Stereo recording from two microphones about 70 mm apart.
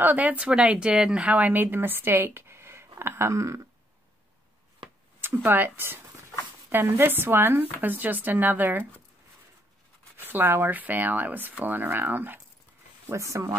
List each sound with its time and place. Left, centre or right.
0.0 s a woman's voice: right
1.4 s speech: right
3.0 s a sound: right
5.2 s speech: right
10.1 s speech: right
13.1 s speech: right